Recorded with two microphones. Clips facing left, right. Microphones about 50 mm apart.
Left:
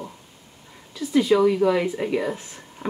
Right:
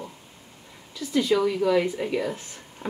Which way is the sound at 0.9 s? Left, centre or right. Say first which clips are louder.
Left 4 dB; centre.